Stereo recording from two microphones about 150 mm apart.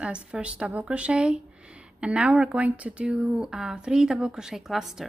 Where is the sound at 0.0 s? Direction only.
5° right (ahead or behind).